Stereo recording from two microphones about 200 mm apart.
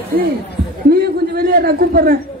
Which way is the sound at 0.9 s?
50° right (ahead or behind).